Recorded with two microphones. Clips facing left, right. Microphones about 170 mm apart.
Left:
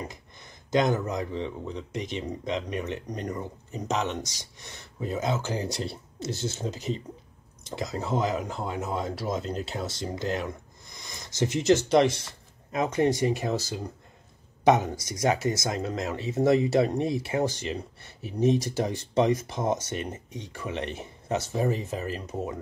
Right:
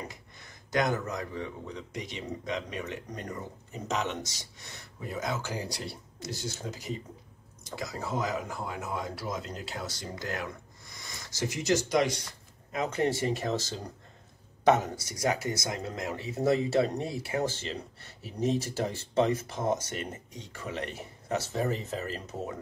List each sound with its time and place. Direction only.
0.1 s speech: 20° left (ahead or behind)
3.3 s speech: 20° left (ahead or behind)